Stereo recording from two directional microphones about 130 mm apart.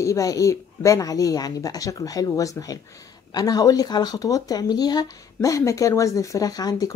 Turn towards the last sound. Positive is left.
turn(degrees=30)  # may be behind; listen again after turning